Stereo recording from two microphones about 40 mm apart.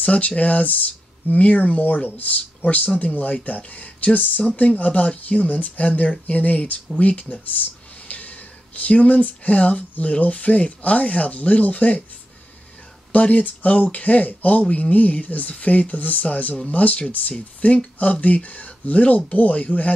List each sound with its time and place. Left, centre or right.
0.0 s speech: left
13.1 s speech: left